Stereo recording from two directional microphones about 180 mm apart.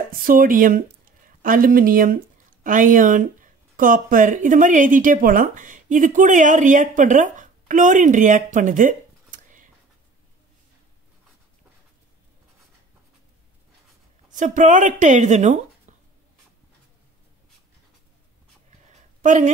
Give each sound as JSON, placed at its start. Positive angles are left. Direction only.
{"t": 0.1, "sound": "speech", "side_deg": -50}
{"t": 14.3, "sound": "a woman's voice", "side_deg": -45}
{"t": 18.9, "sound": "a sound", "side_deg": -40}